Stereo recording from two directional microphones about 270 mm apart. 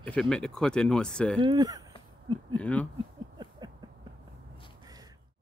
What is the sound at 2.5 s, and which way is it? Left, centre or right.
Speech, centre.